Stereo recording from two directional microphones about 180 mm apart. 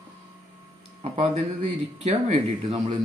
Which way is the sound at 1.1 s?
35° right (ahead or behind).